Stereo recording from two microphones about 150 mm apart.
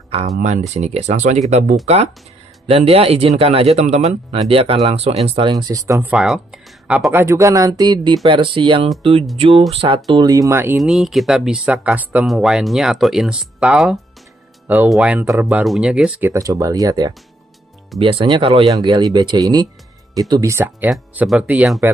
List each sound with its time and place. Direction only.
0.4 s speech: 50° right (ahead or behind)
2.6 s a man's voice: 40° right (ahead or behind)
5.5 s speech: 25° right (ahead or behind)
6.0 s speech: 5° right (ahead or behind)
7.1 s a man's voice: 15° right (ahead or behind); by 10.0 s 35° right (ahead or behind)
10.1 s speech: 25° right (ahead or behind)
10.8 s speech: centre (ahead or behind); by 17.1 s 25° right (ahead or behind)
17.9 s a man's voice: 40° right (ahead or behind); by 21.7 s 10° right (ahead or behind)